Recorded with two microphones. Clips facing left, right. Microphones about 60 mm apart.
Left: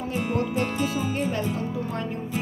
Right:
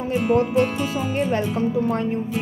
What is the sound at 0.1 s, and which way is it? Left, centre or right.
Speech, right.